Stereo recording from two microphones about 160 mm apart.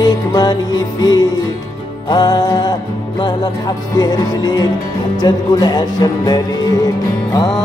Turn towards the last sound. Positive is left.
turn(degrees=25)  # may be behind; listen again after turning